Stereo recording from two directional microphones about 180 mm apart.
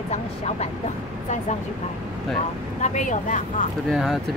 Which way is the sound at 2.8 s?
40° left (ahead or behind).